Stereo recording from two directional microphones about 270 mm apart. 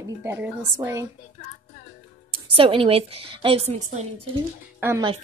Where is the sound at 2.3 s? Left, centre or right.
Centre.